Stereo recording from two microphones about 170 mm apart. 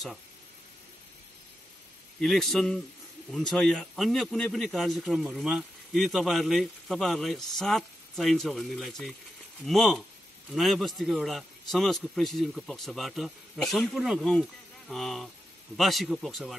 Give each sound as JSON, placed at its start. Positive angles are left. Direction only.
{"t": 2.1, "sound": "a man's voice", "side_deg": 0}